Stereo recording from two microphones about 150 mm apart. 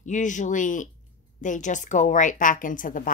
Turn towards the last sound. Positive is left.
turn(degrees=65)  # may be behind; listen again after turning